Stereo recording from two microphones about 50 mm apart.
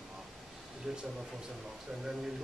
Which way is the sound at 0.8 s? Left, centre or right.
Centre.